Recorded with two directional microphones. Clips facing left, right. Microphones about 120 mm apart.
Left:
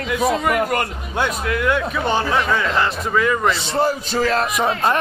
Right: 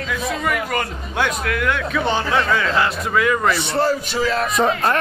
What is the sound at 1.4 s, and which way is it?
Speech, 20° left (ahead or behind).